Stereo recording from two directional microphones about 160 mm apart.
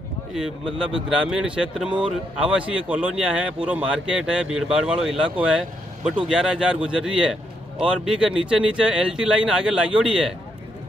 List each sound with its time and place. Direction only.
0.3 s speech: 5° right (ahead or behind)